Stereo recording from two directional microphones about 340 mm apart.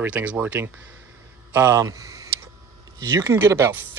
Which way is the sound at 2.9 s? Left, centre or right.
Centre.